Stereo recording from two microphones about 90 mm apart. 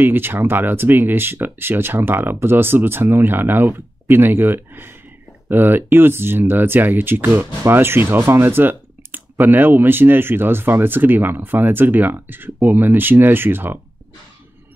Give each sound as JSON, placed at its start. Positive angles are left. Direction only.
{"t": 0.0, "sound": "speech", "side_deg": -25}